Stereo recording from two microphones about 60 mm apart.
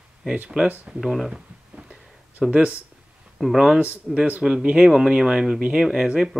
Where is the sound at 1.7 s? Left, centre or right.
Right.